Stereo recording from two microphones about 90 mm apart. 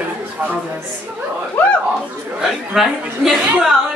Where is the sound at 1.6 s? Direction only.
15° left (ahead or behind).